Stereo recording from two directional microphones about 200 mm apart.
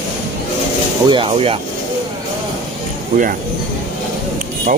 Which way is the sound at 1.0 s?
25° right (ahead or behind).